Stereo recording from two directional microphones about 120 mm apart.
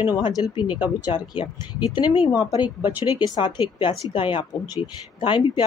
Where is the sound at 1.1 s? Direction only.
40° left (ahead or behind).